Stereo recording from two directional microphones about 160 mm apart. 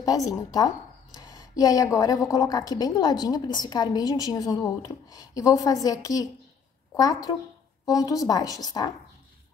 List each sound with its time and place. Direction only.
0.0 s speech: 20° left (ahead or behind)